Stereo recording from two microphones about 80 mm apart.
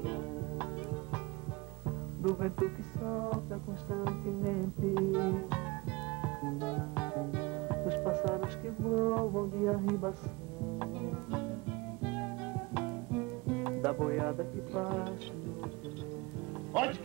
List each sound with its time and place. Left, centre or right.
0.0 s music: centre
1.9 s music: centre
13.8 s speech: centre